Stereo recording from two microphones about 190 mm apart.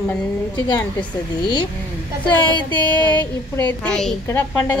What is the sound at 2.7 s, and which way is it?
Speech, 10° left (ahead or behind).